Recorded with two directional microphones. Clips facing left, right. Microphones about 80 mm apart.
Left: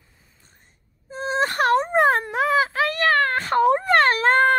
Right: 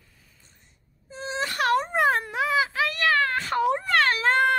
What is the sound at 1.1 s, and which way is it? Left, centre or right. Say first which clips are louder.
Wail: left 7 dB; left.